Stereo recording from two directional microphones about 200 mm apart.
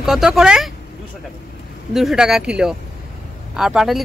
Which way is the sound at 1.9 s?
Centre (ahead or behind).